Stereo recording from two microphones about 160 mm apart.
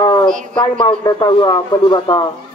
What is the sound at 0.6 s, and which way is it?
Speech, 30° left (ahead or behind).